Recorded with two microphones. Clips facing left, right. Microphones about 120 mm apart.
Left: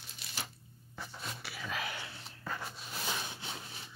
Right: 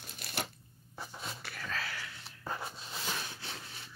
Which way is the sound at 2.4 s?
20° right (ahead or behind).